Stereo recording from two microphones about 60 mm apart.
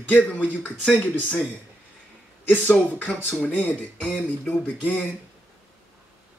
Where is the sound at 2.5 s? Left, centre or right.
Left.